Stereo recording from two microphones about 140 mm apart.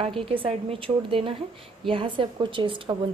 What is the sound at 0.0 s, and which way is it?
A woman's voice, 40° right (ahead or behind).